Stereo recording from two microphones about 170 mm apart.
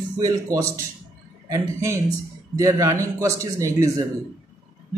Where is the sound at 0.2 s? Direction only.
25° right (ahead or behind).